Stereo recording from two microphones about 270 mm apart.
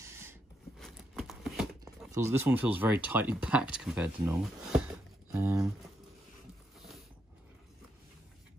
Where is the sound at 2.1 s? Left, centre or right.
Centre.